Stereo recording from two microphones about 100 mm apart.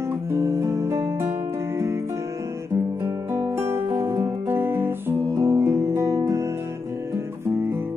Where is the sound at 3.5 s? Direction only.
25° right (ahead or behind).